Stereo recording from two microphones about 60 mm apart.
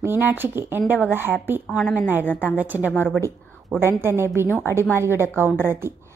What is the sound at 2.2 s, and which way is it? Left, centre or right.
Speech, left.